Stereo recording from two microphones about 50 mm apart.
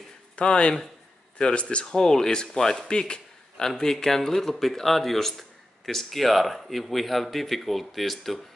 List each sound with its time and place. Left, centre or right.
0.4 s speech: left; by 8.4 s centre